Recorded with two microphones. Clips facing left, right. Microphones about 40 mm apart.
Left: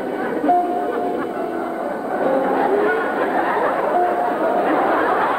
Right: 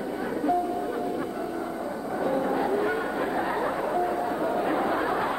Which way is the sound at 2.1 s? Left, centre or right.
Left.